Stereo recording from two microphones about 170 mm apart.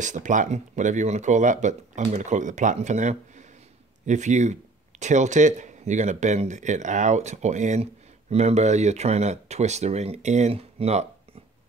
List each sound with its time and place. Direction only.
0.0 s speech: 45° right (ahead or behind)